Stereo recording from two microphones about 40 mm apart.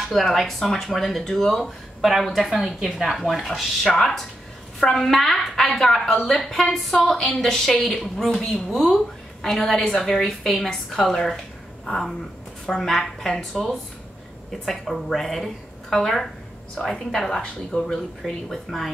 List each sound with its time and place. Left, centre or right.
0.1 s speech: centre
3.2 s a woman's voice: centre